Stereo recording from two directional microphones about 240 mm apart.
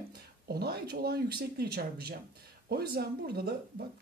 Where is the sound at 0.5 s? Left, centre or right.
Right.